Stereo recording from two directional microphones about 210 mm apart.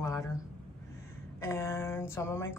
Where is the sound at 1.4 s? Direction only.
10° left (ahead or behind).